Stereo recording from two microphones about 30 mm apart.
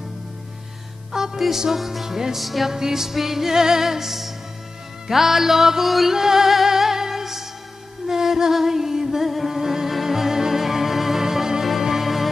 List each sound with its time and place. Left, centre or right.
1.3 s music: centre
1.7 s speech: centre
2.0 s music: centre
2.3 s speech: centre
2.7 s music: centre
5.9 s speech: centre
6.1 s music: centre